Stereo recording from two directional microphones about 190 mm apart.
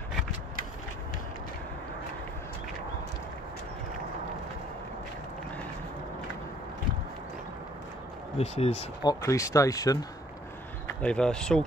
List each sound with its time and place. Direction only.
8.4 s speech: 35° left (ahead or behind)
9.0 s speech: 15° left (ahead or behind)
10.9 s speech: 5° left (ahead or behind)